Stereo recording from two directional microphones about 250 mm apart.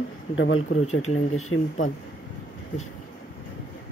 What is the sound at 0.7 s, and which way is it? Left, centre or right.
Speech, left.